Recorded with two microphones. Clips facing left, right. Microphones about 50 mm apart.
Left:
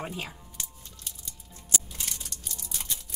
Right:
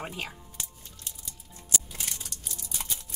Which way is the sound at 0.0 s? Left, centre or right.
Centre.